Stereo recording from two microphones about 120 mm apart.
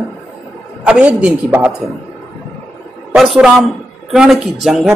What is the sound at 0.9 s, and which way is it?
Speech, 10° right (ahead or behind).